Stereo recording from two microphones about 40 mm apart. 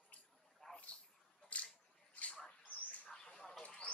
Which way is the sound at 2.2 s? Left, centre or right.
Left.